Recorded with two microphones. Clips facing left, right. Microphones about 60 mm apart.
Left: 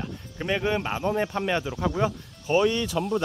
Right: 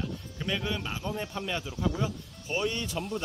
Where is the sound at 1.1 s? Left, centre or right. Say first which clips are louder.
Left 8 dB; left.